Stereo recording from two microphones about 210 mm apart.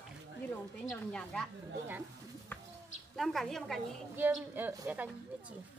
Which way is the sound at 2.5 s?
10° left (ahead or behind).